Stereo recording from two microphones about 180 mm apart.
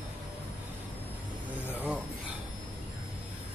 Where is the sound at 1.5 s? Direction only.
5° right (ahead or behind).